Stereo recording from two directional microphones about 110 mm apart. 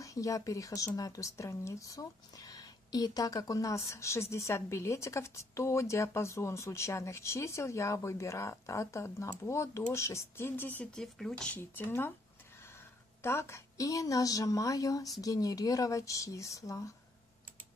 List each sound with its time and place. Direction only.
0.0 s speech: 30° left (ahead or behind)
11.0 s speech: 5° left (ahead or behind)
11.5 s speech: 15° left (ahead or behind)
13.2 s a woman's voice: 25° left (ahead or behind)